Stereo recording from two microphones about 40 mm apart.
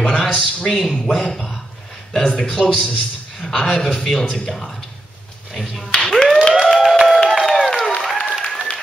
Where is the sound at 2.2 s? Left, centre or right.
Centre.